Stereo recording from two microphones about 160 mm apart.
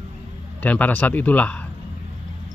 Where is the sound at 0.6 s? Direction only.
10° left (ahead or behind).